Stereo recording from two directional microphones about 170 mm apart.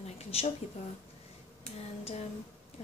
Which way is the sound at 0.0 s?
35° left (ahead or behind).